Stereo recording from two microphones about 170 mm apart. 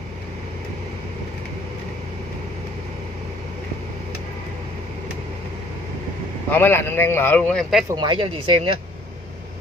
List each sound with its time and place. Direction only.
6.5 s speech: 10° left (ahead or behind)
7.9 s speech: 25° right (ahead or behind)